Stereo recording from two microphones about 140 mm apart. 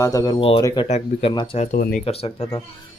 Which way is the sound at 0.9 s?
45° left (ahead or behind).